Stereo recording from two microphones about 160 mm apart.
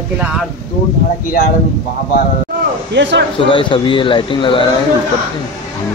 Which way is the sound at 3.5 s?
30° left (ahead or behind).